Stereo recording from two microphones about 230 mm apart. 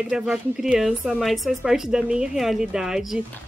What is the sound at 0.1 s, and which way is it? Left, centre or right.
A woman's voice, centre.